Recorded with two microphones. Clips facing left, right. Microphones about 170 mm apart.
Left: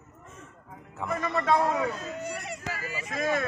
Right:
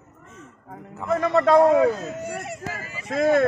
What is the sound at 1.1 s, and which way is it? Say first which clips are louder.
Speech: right 8 dB; 70° right (ahead or behind).